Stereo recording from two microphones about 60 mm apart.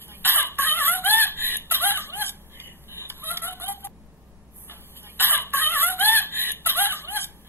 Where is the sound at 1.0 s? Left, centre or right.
Left.